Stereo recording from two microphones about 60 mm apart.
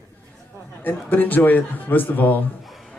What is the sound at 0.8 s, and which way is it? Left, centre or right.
Speech, left.